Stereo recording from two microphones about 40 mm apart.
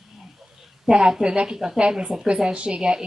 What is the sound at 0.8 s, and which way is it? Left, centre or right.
A woman's voice, centre.